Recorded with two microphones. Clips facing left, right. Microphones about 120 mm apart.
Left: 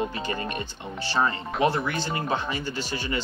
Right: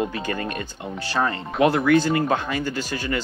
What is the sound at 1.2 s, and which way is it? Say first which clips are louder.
Speech: right 4 dB; 60° right (ahead or behind).